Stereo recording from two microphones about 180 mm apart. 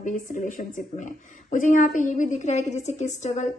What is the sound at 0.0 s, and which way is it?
A woman's voice, 45° left (ahead or behind).